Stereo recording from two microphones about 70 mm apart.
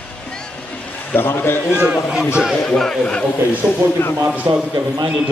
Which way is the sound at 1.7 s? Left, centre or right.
Centre.